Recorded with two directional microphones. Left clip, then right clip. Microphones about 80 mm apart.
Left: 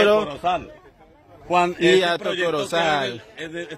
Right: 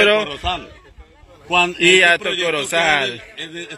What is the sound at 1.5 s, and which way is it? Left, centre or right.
Speech, left.